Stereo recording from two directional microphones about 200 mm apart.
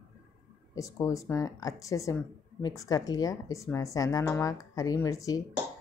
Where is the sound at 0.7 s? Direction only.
15° left (ahead or behind).